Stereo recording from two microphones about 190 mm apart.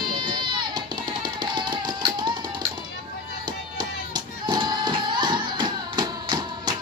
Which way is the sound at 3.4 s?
20° right (ahead or behind).